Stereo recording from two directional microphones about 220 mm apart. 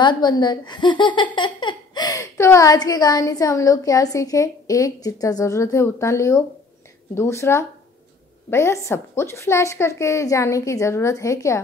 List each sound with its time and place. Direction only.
0.0 s speech: 20° left (ahead or behind)